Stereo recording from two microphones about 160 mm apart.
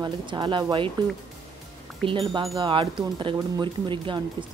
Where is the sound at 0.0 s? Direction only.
30° right (ahead or behind).